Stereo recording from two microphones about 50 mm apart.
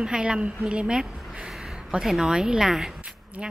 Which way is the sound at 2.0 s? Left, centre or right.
Centre.